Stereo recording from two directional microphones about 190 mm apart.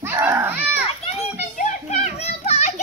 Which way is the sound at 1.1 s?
35° left (ahead or behind).